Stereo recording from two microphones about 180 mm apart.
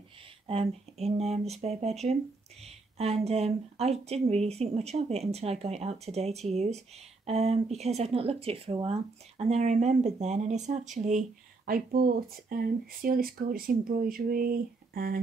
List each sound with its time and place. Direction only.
0.5 s speech: 35° right (ahead or behind); by 15.1 s 55° right (ahead or behind)